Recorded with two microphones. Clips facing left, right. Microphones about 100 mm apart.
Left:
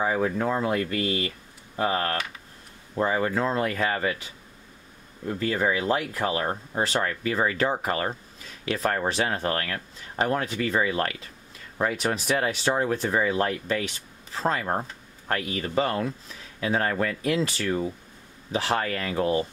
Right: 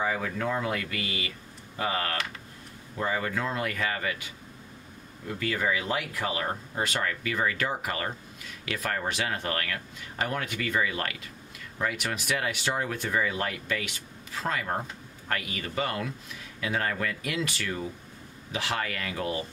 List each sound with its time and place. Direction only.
0.0 s speech: 30° left (ahead or behind)
5.4 s speech: 30° left (ahead or behind)